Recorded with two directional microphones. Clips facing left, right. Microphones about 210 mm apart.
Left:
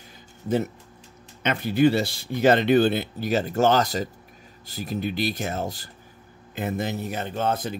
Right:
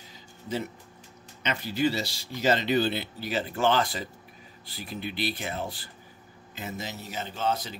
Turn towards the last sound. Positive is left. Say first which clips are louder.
# left 4 dB
turn(degrees=55)  # may be behind; listen again after turning